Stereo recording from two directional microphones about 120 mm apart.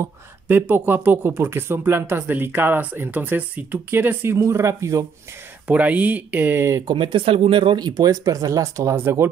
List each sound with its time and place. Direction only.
0.0 s speech: 15° right (ahead or behind)
5.7 s speech: 10° right (ahead or behind)
6.9 s speech: 45° right (ahead or behind); by 9.3 s 20° right (ahead or behind)